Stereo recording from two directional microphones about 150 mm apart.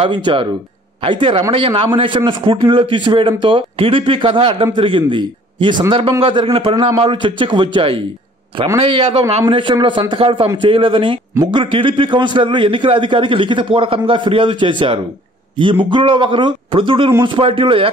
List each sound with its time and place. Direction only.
0.0 s a man's voice: 35° right (ahead or behind)